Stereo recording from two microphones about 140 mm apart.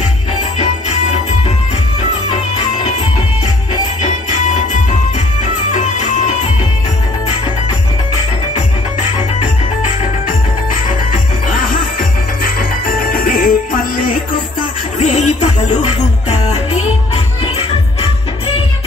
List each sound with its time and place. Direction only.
5.7 s music: 60° left (ahead or behind)
12.8 s music: 90° left
15.0 s music: 55° left (ahead or behind)